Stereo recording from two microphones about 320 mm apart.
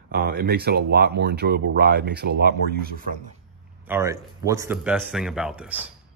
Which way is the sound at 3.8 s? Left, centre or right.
Centre.